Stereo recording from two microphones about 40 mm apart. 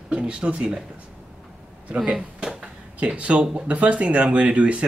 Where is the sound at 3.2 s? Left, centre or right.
Right.